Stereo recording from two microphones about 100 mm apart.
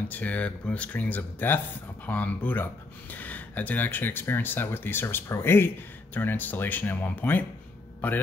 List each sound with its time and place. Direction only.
0.1 s speech: 15° left (ahead or behind)